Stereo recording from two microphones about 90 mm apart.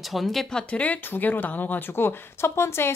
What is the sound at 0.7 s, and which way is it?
Speech, 15° left (ahead or behind).